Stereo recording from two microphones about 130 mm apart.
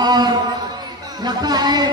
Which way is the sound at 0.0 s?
30° right (ahead or behind).